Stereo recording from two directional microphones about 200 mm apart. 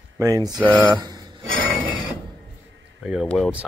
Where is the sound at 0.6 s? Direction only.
Centre (ahead or behind).